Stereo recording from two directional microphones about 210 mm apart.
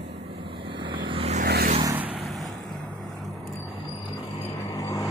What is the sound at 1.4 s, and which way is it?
Vehicle, 50° right (ahead or behind).